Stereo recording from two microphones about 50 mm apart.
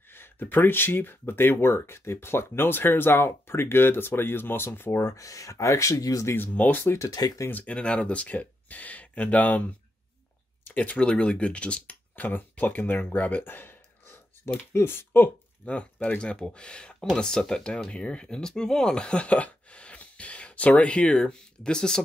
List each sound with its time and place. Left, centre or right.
0.1 s speech: left
5.0 s speech: left
6.3 s speech: left
6.8 s speech: left
7.5 s speech: left
10.7 s speech: left
12.3 s speech: left
15.6 s speech: left